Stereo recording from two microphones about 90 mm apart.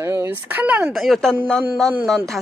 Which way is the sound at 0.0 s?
25° right (ahead or behind).